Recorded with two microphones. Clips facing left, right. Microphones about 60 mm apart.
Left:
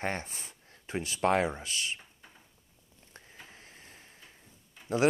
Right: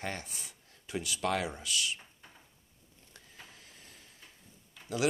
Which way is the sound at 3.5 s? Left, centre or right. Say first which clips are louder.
Left 3 dB; left.